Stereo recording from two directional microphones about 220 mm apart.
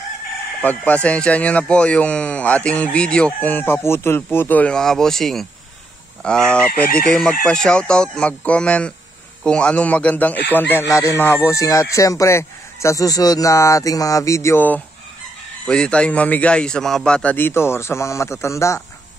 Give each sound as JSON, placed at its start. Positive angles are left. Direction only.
{"t": 0.6, "sound": "speech", "side_deg": 5}